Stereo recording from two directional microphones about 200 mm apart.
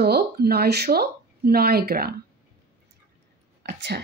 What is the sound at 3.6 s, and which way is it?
Speech, 55° right (ahead or behind).